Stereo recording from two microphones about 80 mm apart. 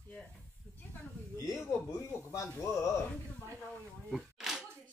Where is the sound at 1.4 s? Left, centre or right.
Left.